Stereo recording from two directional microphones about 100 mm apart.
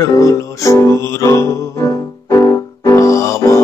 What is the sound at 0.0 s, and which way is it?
Music, 30° left (ahead or behind).